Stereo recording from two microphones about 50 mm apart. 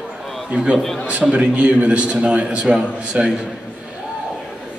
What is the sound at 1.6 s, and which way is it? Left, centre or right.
A man's voice, right.